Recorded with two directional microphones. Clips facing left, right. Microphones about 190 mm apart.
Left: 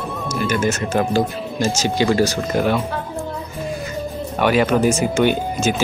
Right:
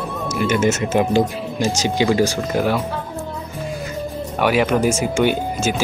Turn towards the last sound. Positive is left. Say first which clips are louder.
# left 1 dB
turn(degrees=-10)  # may be behind; listen again after turning